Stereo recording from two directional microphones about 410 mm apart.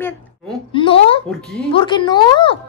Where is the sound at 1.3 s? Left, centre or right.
Centre.